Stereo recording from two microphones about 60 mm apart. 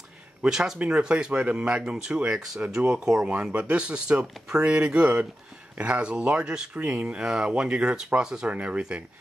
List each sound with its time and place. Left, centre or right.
0.4 s speech: centre
8.5 s speech: right